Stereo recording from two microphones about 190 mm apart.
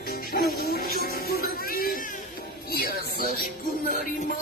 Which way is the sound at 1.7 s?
50° left (ahead or behind).